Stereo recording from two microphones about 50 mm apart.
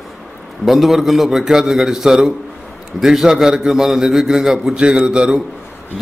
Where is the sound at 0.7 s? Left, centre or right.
Centre.